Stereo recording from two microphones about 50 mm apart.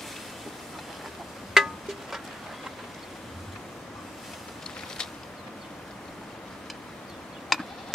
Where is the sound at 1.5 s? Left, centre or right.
Centre.